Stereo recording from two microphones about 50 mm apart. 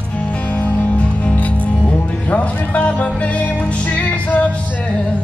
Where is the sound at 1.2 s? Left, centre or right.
Left.